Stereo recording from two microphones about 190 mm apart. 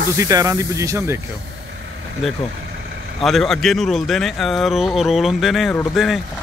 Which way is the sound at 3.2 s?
Centre (ahead or behind).